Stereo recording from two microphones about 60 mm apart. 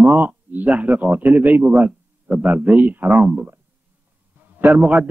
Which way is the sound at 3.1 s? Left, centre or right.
Centre.